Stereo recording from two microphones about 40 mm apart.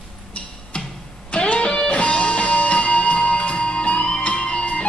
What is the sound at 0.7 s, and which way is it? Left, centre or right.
Music, left.